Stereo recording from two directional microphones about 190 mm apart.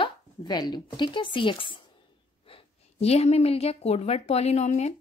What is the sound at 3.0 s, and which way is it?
A woman's voice, 35° left (ahead or behind).